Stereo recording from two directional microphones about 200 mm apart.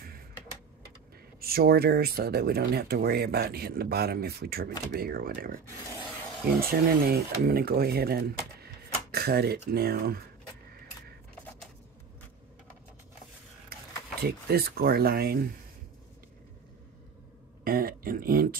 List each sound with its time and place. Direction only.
1.4 s speech: 50° right (ahead or behind)
6.7 s speech: 50° right (ahead or behind)
14.2 s speech: 50° right (ahead or behind)
17.6 s speech: 45° right (ahead or behind)